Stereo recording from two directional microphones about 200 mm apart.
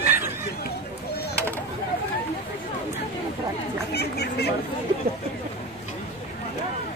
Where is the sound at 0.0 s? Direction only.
10° right (ahead or behind).